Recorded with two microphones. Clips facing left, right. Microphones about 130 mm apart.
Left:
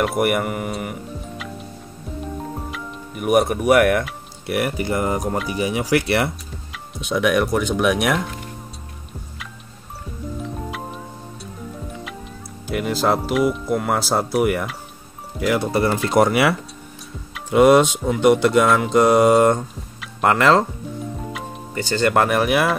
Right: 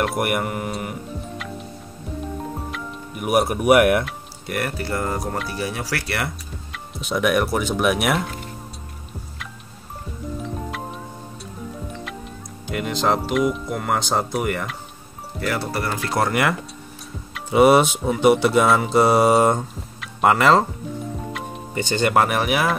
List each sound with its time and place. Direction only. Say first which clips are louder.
0.0 s speech: left 3 dB; centre (ahead or behind)
2.5 s music: even; centre (ahead or behind)
4.0 s speech: left 1 dB; 5° left (ahead or behind); by 6.3 s 25° left (ahead or behind)
6.7 s speech: left 2 dB; centre (ahead or behind)
10.4 s music: left 1 dB; centre (ahead or behind)
12.6 s speech: left 2 dB; 5° left (ahead or behind)
15.7 s speech: left 6 dB; 25° left (ahead or behind)
16.3 s speech: left 3 dB; 5° left (ahead or behind)
17.3 s speech: left 1 dB; 5° right (ahead or behind)
21.3 s music: even; centre (ahead or behind)
21.7 s speech: even; 20° right (ahead or behind)
22.0 s speech: left 2 dB; 5° right (ahead or behind)